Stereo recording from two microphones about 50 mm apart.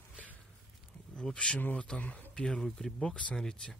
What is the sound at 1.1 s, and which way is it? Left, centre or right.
Speech, centre.